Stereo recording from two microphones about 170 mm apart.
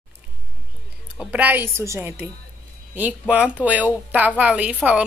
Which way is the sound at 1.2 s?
10° right (ahead or behind).